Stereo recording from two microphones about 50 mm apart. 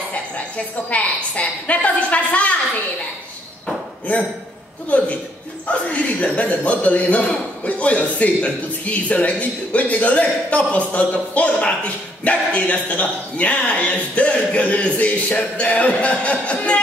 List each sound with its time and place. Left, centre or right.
0.8 s speech: left
4.9 s speech: left